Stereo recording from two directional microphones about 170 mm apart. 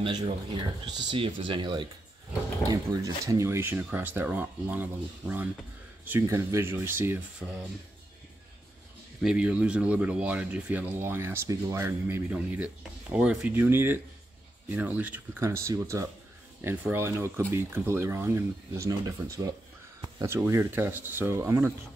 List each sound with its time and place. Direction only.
0.5 s speech: 25° right (ahead or behind); by 7.5 s 5° right (ahead or behind)
9.2 s speech: 5° right (ahead or behind)